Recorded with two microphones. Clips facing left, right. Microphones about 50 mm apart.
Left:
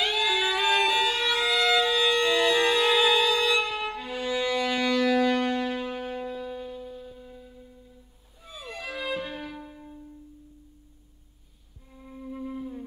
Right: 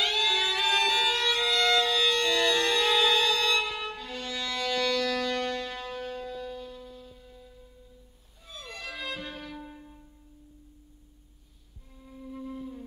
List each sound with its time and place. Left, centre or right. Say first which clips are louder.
0.0 s violin: left 2 dB; centre
8.5 s music: left 3 dB; centre
11.9 s music: left 3 dB; left